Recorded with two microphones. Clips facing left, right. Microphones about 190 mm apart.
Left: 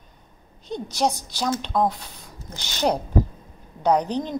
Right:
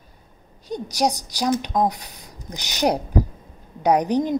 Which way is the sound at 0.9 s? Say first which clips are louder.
Right 2 dB; 15° right (ahead or behind).